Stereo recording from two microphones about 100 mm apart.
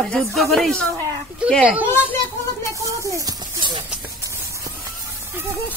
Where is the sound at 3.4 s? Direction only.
50° right (ahead or behind).